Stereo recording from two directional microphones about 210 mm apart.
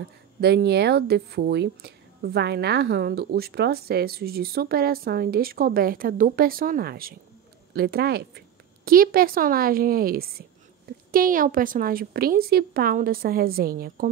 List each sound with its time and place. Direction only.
0.4 s a woman's voice: 50° right (ahead or behind)